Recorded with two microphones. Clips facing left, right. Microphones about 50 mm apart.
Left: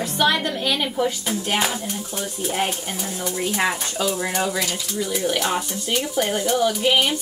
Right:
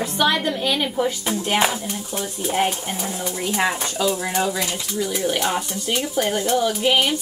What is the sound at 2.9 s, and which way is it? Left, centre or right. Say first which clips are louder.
Speech: right 1 dB; centre.